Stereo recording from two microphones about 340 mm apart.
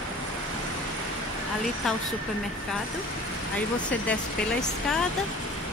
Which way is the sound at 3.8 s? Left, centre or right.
Centre.